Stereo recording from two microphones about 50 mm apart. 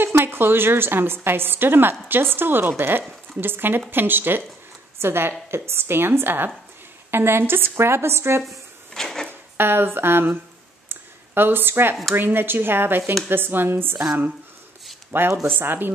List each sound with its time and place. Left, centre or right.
0.0 s a woman's voice: right
8.9 s drawer open or close: centre
9.6 s a woman's voice: right
10.9 s a sound: right
12.2 s a woman's voice: right
15.0 s a woman's voice: right